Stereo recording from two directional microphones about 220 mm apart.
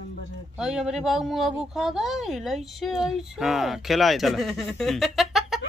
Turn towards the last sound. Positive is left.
turn(degrees=0)  # may be behind; listen again after turning